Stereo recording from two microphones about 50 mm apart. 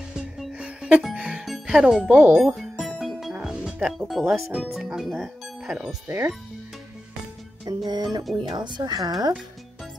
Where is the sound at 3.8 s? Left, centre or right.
Centre.